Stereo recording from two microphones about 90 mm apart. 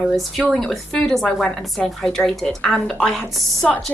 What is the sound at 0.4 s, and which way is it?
Speech, 15° left (ahead or behind).